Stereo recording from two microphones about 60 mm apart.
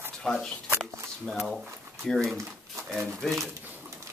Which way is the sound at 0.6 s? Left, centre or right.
Right.